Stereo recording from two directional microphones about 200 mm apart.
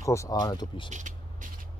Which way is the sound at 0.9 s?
40° right (ahead or behind).